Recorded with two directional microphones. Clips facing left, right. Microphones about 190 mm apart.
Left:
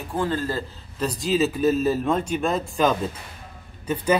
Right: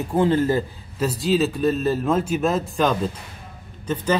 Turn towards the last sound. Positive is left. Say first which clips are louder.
# right 1 dB
turn(degrees=10)  # may be behind; listen again after turning